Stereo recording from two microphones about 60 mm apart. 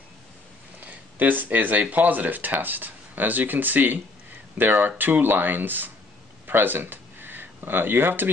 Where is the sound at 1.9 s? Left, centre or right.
Right.